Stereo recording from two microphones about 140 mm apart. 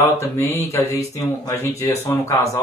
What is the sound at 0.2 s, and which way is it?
Speech, 20° left (ahead or behind).